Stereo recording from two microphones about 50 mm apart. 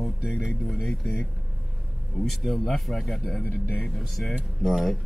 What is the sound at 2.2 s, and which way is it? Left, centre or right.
Speech, centre.